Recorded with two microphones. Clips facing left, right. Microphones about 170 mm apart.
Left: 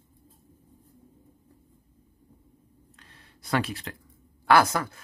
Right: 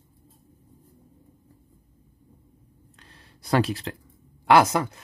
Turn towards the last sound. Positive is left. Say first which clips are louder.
# right 3 dB
turn(degrees=-20)  # may be behind; listen again after turning